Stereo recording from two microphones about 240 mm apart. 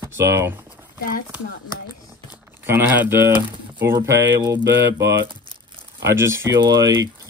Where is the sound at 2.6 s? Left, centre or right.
Centre.